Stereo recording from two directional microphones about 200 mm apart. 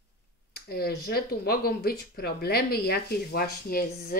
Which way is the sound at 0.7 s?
50° left (ahead or behind).